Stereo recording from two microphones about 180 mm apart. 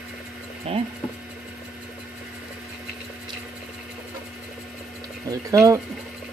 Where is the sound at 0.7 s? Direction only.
35° right (ahead or behind).